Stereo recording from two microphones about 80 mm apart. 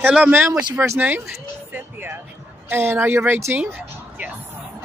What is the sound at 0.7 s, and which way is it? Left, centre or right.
Speech, right.